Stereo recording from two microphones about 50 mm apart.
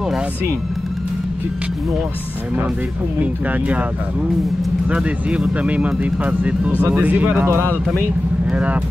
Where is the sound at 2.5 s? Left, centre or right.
Right.